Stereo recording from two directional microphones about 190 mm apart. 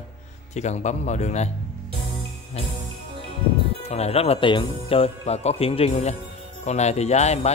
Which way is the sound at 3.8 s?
35° left (ahead or behind).